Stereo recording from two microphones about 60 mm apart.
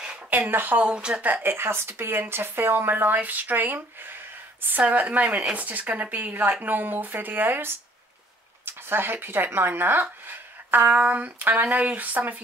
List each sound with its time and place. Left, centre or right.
0.3 s a woman's voice: right
0.8 s a woman's voice: centre